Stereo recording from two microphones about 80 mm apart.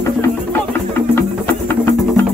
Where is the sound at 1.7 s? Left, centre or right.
Left.